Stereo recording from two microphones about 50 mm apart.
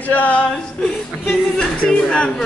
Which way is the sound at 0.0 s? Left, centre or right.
Left.